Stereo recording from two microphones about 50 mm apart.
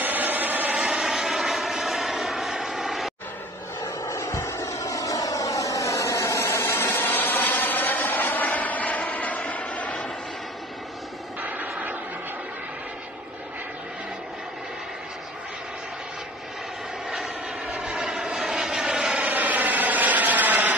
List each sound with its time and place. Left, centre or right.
0.0 s vehicle: right
0.7 s vehicle: centre
3.8 s vehicle: left
5.4 s a sound: left
11.4 s vehicle: right
17.1 s vehicle: centre
19.3 s vehicle: right